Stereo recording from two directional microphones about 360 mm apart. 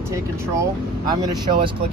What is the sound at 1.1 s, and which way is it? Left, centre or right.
Speech, centre.